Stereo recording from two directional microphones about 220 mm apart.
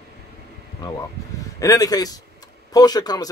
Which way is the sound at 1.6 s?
15° left (ahead or behind).